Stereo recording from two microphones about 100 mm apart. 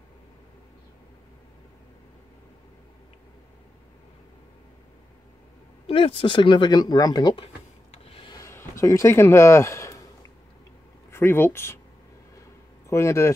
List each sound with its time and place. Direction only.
5.9 s speech: 70° left (ahead or behind); by 7.3 s 40° left (ahead or behind)
7.9 s rub: 75° left (ahead or behind)
8.5 s a sound: 30° left (ahead or behind)
11.1 s speech: 25° left (ahead or behind)
12.9 s speech: 30° left (ahead or behind)